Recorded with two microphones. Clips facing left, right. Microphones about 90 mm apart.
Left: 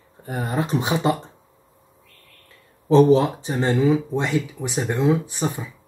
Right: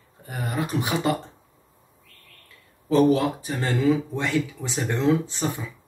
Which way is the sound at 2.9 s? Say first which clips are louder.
Left 4 dB; 25° left (ahead or behind).